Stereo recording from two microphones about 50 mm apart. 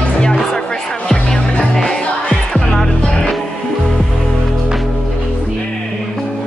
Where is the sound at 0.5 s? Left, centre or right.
Centre.